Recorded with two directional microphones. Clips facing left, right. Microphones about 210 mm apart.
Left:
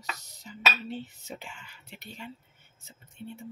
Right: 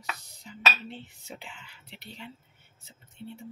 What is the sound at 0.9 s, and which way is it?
Speech, 45° left (ahead or behind).